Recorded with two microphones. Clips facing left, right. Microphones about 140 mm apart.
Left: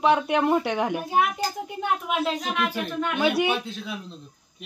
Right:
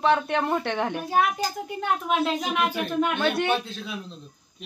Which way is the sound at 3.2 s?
10° left (ahead or behind).